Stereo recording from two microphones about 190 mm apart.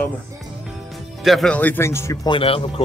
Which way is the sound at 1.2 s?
Centre (ahead or behind).